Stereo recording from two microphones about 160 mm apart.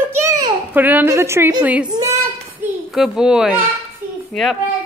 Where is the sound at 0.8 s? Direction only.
10° right (ahead or behind).